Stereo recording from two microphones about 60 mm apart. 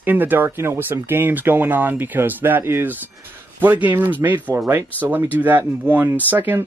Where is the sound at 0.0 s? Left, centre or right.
Right.